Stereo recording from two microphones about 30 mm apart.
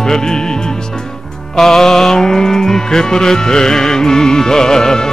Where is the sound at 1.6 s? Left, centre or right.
Centre.